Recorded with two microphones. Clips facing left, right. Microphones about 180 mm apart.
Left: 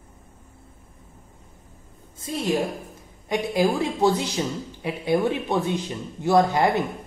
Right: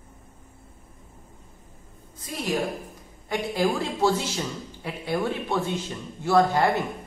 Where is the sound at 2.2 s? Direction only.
25° left (ahead or behind).